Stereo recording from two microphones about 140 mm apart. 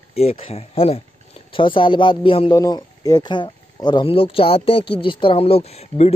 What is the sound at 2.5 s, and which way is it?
Speech, 25° left (ahead or behind).